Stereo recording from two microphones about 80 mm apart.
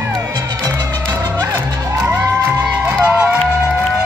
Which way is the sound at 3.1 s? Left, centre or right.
Centre.